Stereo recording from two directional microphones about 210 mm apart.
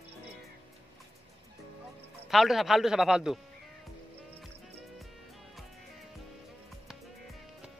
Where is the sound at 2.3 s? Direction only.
Centre (ahead or behind).